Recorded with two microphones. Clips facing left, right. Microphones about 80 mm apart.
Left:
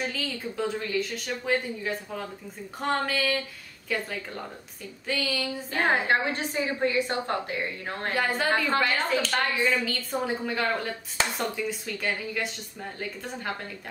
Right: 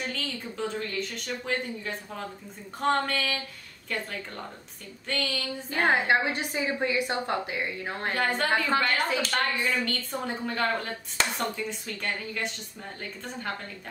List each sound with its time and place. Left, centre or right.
0.0 s speech: centre
5.0 s speech: centre
5.8 s a woman's voice: centre
8.1 s speech: centre